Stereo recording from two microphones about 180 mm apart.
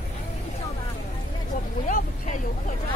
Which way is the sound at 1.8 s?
45° left (ahead or behind).